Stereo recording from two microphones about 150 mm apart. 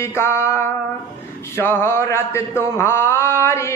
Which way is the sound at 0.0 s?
15° left (ahead or behind).